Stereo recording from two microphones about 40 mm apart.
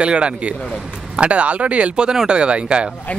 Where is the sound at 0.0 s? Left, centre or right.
Right.